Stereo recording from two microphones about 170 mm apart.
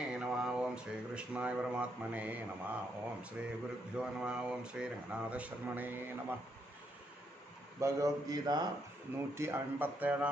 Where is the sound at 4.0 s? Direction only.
5° right (ahead or behind).